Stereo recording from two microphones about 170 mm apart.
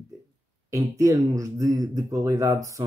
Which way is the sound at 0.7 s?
20° right (ahead or behind).